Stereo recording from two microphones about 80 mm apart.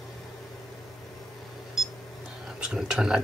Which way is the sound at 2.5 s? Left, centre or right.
Centre.